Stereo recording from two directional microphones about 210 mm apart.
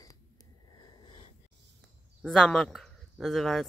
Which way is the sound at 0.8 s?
20° left (ahead or behind).